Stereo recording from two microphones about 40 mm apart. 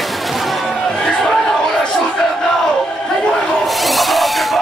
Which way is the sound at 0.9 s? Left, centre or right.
Centre.